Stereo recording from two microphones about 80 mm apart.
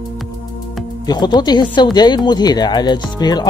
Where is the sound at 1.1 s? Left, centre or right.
Left.